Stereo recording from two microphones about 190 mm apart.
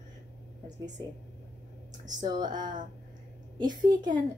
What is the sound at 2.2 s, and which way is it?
Speech, 20° right (ahead or behind).